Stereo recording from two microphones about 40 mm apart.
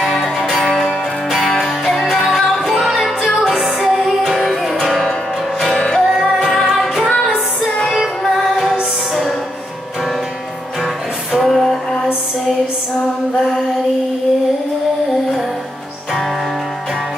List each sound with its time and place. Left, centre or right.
0.2 s music: centre
5.8 s music: centre
6.4 s music: centre
7.1 s music: left
11.4 s music: centre